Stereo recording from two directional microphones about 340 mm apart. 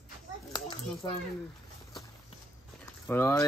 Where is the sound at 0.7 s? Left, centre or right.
Centre.